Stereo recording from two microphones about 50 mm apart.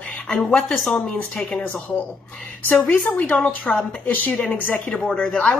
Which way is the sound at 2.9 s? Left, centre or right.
Left.